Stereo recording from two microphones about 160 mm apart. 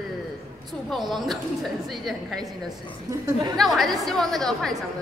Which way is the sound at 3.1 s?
25° right (ahead or behind).